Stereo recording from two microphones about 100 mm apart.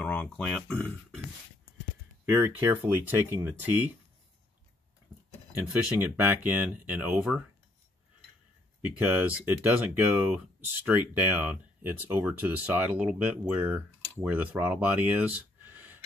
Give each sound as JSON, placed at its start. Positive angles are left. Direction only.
{"t": 0.0, "sound": "speech", "side_deg": 15}
{"t": 2.2, "sound": "speech", "side_deg": -20}
{"t": 6.1, "sound": "speech", "side_deg": -20}
{"t": 8.8, "sound": "speech", "side_deg": -15}